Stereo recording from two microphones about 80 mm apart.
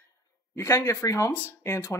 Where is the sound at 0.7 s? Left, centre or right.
Left.